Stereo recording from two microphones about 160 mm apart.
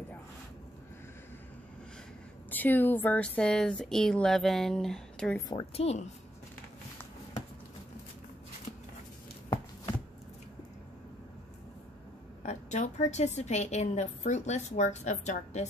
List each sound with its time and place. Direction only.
2.5 s speech: 10° left (ahead or behind)
5.5 s a woman's voice: 35° left (ahead or behind)
12.4 s a woman's voice: 45° left (ahead or behind)